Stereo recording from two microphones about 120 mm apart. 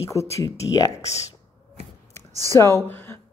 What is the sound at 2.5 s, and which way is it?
Speech, 25° left (ahead or behind).